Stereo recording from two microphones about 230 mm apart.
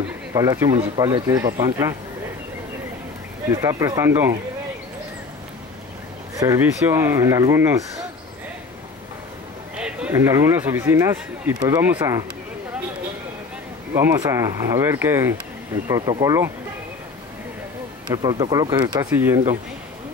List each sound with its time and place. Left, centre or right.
0.3 s speech: centre
3.4 s speech: centre
6.3 s speech: centre
9.8 s speech: centre
13.9 s speech: centre
18.1 s speech: centre